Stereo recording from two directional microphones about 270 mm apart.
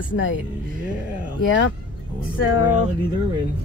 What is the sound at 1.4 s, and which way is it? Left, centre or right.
Speech, left.